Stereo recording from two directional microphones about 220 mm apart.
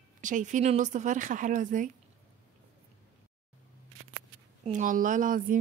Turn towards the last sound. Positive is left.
turn(degrees=-35)  # may be behind; listen again after turning